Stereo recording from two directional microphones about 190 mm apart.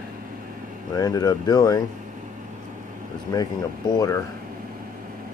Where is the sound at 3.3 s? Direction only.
20° left (ahead or behind).